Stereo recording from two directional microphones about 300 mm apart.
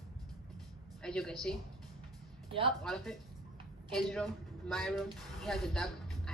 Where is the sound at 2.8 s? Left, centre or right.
Centre.